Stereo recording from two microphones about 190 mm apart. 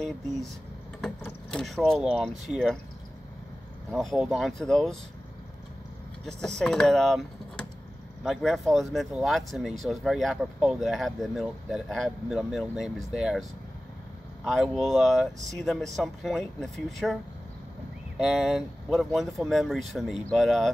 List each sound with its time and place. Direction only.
1.0 s speech: centre (ahead or behind)
3.9 s speech: centre (ahead or behind)
6.2 s speech: 5° left (ahead or behind)